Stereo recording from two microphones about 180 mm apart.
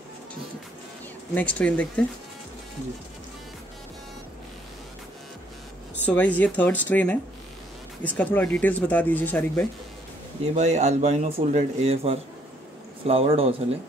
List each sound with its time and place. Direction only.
1.3 s speech: 5° left (ahead or behind)
6.0 s speech: 10° left (ahead or behind)
10.5 s speech: 40° right (ahead or behind)